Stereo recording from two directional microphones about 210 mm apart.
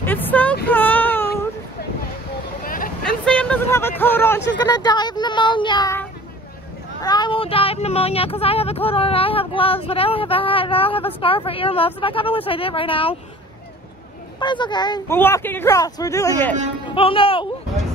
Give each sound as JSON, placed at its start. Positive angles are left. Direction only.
{"t": 0.0, "sound": "a sound", "side_deg": 10}
{"t": 0.7, "sound": "baby cry", "side_deg": 10}
{"t": 2.6, "sound": "vehicle", "side_deg": 40}
{"t": 3.0, "sound": "vehicle", "side_deg": 5}
{"t": 4.6, "sound": "speech", "side_deg": 20}
{"t": 14.4, "sound": "speech", "side_deg": 20}
{"t": 15.1, "sound": "speech", "side_deg": 10}
{"t": 16.8, "sound": "speech", "side_deg": 25}